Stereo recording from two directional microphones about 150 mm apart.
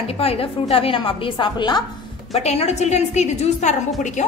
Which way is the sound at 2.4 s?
45° left (ahead or behind).